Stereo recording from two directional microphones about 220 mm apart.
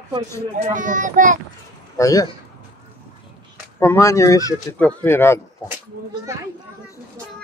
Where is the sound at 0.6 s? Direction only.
35° right (ahead or behind).